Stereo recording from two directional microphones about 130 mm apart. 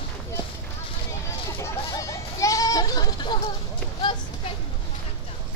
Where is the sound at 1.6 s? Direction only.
25° left (ahead or behind).